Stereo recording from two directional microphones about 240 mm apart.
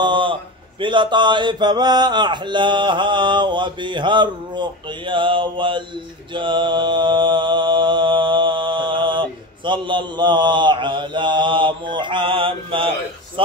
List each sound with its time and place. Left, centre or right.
0.0 s mantra: centre